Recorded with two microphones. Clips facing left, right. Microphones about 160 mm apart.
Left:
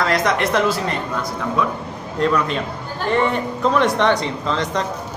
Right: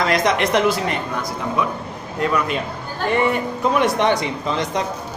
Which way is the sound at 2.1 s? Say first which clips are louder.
Left 2 dB; 5° right (ahead or behind).